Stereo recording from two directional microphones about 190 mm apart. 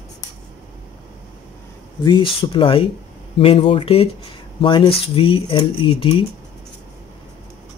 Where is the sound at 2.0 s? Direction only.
25° left (ahead or behind).